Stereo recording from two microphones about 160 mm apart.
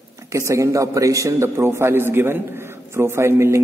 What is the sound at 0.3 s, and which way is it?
A man's voice, 20° right (ahead or behind).